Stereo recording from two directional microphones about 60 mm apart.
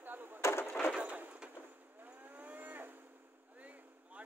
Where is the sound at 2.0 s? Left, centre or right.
Right.